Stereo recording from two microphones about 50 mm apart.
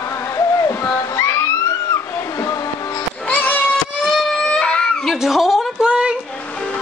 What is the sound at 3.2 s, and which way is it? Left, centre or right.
Cat, left.